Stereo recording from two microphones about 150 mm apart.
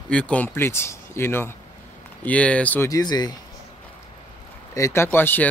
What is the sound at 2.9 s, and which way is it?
Speech, 25° left (ahead or behind).